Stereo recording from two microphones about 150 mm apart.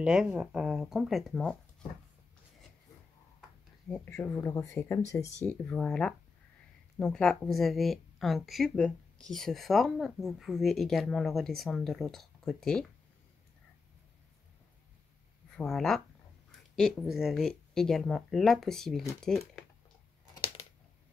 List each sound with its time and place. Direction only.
0.0 s a woman's voice: 5° right (ahead or behind)
3.9 s a woman's voice: 15° left (ahead or behind)
15.5 s a woman's voice: 5° left (ahead or behind)